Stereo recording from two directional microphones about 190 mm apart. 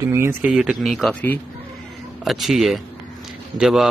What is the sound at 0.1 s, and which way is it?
A man's voice, 10° right (ahead or behind).